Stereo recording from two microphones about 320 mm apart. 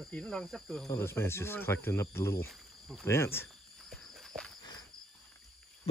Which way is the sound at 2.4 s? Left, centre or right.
Centre.